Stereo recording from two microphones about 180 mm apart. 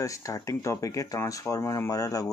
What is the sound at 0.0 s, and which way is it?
Speech, 20° left (ahead or behind).